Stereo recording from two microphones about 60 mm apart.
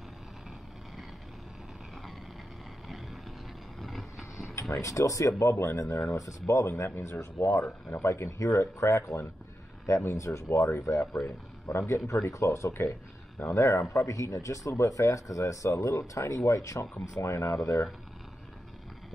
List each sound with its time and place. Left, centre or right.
3.8 s vehicle: centre
4.6 s speech: left
9.8 s speech: left
12.1 s speech: left